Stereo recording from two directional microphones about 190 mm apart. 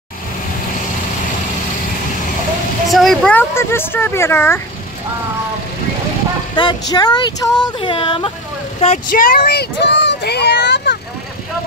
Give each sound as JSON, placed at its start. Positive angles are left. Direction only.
{"t": 2.9, "sound": "speech", "side_deg": 0}
{"t": 6.5, "sound": "speech", "side_deg": 25}
{"t": 8.8, "sound": "speech", "side_deg": 45}